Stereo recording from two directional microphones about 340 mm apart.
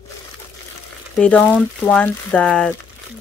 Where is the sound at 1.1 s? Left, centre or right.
Centre.